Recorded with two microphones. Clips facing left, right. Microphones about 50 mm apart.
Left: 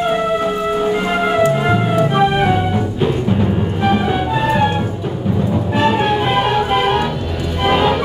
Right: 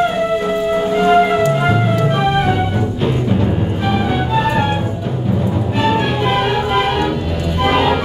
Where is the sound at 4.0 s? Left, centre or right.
Centre.